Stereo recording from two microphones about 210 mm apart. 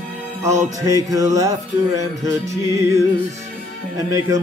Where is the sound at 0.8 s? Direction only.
15° right (ahead or behind).